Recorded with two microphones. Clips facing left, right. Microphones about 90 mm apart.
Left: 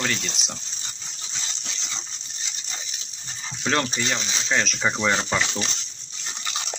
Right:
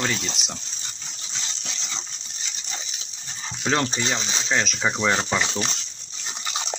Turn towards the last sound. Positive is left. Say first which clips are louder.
# right 1 dB
turn(degrees=-10)  # may be behind; listen again after turning